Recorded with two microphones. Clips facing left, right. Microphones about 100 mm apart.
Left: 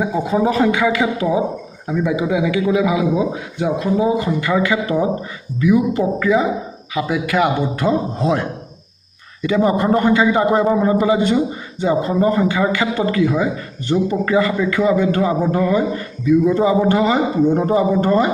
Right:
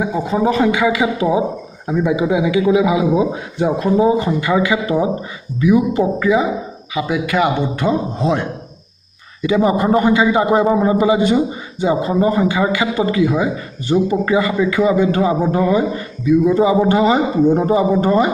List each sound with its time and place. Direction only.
0.0 s a man's voice: centre (ahead or behind); by 3.4 s 20° right (ahead or behind)
3.5 s speech: 40° right (ahead or behind)
4.4 s a man's voice: 15° right (ahead or behind)
6.9 s a man's voice: centre (ahead or behind)